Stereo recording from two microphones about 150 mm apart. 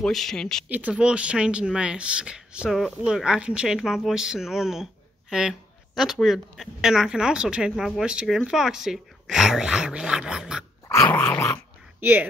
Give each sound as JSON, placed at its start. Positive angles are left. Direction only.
{"t": 0.0, "sound": "speech", "side_deg": 0}
{"t": 0.7, "sound": "speech", "side_deg": -10}
{"t": 10.9, "sound": "dog", "side_deg": 15}
{"t": 12.0, "sound": "speech", "side_deg": -10}